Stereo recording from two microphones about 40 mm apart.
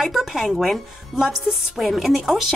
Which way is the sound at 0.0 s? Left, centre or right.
Centre.